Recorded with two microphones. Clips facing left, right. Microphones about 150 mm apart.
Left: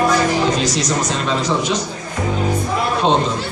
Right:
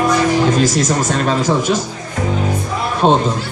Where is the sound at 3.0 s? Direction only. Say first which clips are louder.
Right 4 dB; 50° right (ahead or behind).